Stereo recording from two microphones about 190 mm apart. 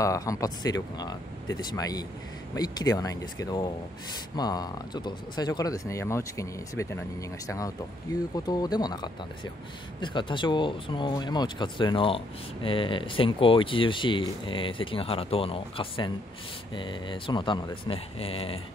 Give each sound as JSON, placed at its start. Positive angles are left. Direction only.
{"t": 0.0, "sound": "speech", "side_deg": 15}